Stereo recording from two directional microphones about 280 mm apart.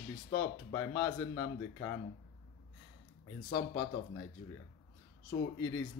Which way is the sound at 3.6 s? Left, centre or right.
Centre.